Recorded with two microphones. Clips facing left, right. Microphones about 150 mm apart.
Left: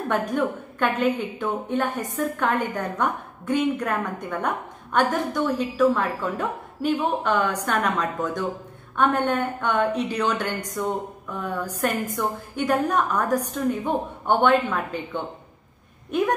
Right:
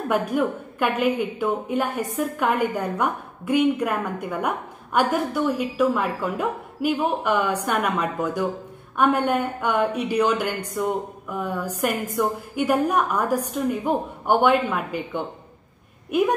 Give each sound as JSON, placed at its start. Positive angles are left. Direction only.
{"t": 0.1, "sound": "a woman's voice", "side_deg": -10}